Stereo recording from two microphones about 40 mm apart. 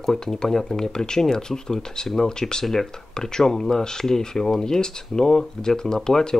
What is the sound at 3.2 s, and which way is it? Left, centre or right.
Speech, centre.